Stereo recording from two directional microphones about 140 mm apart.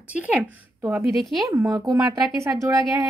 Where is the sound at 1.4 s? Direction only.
25° right (ahead or behind).